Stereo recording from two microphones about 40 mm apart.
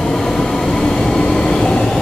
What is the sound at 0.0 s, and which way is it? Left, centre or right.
Train, centre.